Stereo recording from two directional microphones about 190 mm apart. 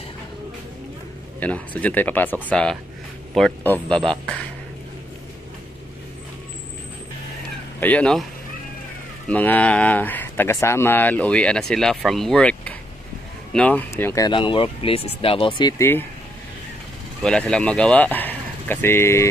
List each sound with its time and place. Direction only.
1.4 s speech: 10° left (ahead or behind)
7.8 s speech: 5° left (ahead or behind)
9.3 s speech: 10° left (ahead or behind); by 15.7 s 25° left (ahead or behind)
17.2 s speech: 5° left (ahead or behind)